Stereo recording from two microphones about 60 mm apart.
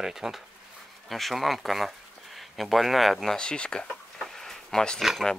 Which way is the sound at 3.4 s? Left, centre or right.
Centre.